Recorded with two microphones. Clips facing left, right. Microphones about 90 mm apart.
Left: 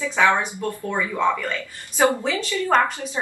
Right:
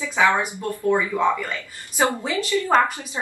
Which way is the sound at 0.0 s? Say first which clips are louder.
Even; 15° right (ahead or behind).